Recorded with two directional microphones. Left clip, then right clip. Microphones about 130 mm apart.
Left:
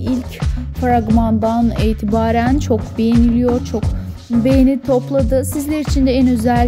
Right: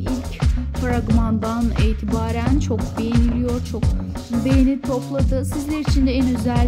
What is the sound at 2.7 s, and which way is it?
Speech, 35° left (ahead or behind).